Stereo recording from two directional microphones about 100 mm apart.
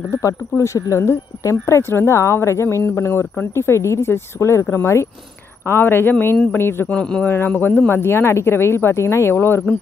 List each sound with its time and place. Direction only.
0.2 s speech: 30° left (ahead or behind)
6.9 s speech: 10° left (ahead or behind)